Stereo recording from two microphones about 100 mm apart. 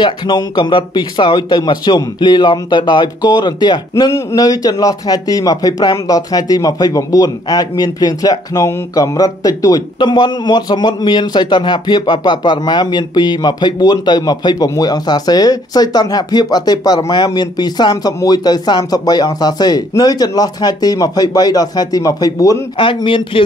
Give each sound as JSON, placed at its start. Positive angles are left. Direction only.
{"t": 0.0, "sound": "a man's voice", "side_deg": 50}
{"t": 3.9, "sound": "a man's voice", "side_deg": 35}
{"t": 9.9, "sound": "a man's voice", "side_deg": 50}
{"t": 23.0, "sound": "speech", "side_deg": 60}